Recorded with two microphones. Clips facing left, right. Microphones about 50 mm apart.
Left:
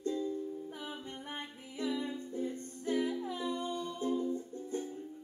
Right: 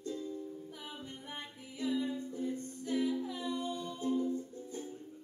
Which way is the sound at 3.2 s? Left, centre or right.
Left.